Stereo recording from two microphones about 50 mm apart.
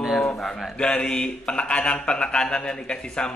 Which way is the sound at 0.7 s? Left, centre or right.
Centre.